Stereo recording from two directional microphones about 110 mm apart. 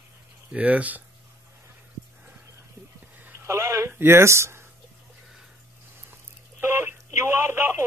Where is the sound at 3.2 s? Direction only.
20° right (ahead or behind).